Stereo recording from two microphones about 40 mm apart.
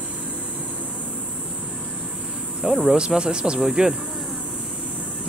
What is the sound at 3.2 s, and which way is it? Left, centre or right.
Speech, right.